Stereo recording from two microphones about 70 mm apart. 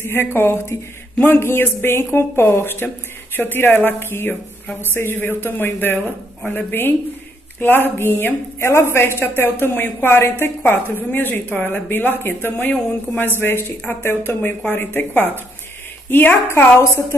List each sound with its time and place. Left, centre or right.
0.0 s a woman's voice: left